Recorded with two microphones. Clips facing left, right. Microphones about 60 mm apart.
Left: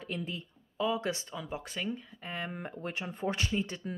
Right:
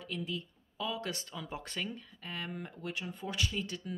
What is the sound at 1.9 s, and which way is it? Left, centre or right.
Speech, centre.